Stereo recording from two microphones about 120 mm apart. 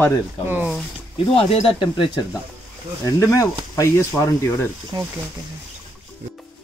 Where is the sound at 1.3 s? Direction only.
50° left (ahead or behind).